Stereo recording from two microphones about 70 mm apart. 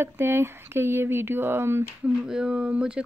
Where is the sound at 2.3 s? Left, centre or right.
Centre.